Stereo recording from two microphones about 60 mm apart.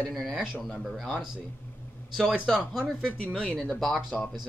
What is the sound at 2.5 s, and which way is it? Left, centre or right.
Speech, centre.